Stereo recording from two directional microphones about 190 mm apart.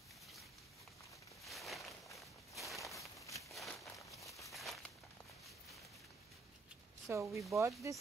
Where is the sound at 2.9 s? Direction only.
15° left (ahead or behind).